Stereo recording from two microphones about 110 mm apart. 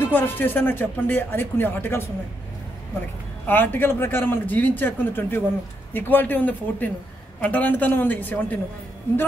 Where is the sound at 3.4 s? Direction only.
20° left (ahead or behind).